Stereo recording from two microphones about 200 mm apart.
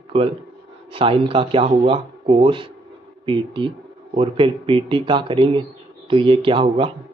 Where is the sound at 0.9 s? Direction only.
25° right (ahead or behind).